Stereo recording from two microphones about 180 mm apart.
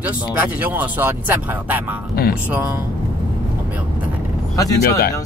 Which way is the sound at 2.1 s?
60° left (ahead or behind).